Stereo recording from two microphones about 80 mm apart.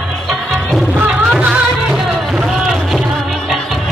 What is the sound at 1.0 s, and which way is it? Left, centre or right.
Music, centre.